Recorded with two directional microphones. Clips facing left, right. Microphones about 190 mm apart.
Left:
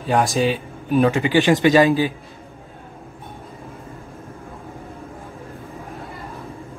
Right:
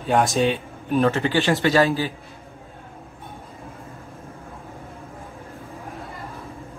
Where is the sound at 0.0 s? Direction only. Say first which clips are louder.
Left 1 dB; centre (ahead or behind).